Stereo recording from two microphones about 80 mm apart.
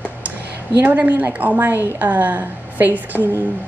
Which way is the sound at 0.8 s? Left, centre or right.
Right.